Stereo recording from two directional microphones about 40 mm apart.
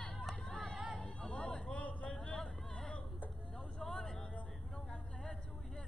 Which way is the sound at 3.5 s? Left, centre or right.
Centre.